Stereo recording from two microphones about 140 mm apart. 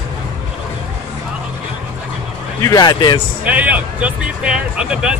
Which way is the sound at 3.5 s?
10° right (ahead or behind).